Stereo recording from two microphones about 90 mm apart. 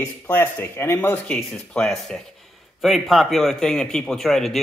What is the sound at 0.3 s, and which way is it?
A man's voice, 25° left (ahead or behind).